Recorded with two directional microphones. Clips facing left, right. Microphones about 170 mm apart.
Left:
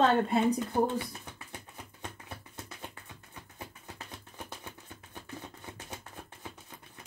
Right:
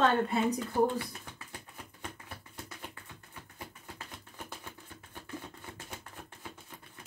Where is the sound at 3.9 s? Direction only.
20° left (ahead or behind).